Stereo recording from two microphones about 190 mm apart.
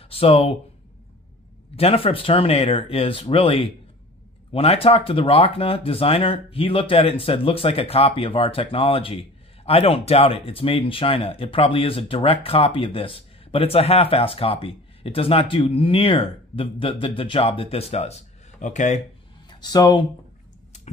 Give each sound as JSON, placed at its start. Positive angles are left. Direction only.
{"t": 0.1, "sound": "speech", "side_deg": 30}
{"t": 1.8, "sound": "speech", "side_deg": 30}
{"t": 19.6, "sound": "speech", "side_deg": 20}